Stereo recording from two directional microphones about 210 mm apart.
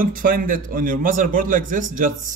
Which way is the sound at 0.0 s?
40° right (ahead or behind).